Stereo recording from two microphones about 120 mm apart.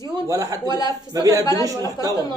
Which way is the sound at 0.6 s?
30° left (ahead or behind).